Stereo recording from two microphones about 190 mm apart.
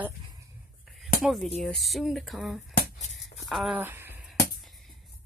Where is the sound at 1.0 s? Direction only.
Centre (ahead or behind).